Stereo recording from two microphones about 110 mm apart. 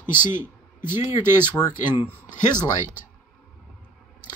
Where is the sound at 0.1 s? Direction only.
20° right (ahead or behind).